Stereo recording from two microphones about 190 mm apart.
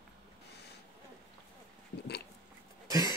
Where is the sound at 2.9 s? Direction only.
20° right (ahead or behind).